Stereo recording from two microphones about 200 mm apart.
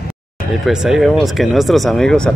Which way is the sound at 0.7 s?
5° right (ahead or behind).